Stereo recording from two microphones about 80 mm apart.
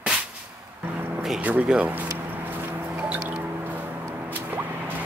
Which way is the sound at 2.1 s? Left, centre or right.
Right.